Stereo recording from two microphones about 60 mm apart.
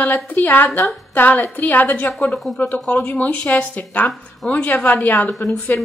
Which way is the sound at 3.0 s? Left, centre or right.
Left.